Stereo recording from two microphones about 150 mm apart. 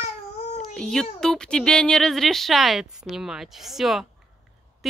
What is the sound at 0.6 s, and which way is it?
Speech, 5° left (ahead or behind).